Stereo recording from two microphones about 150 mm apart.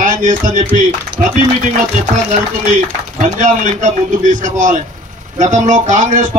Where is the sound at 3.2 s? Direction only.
55° right (ahead or behind).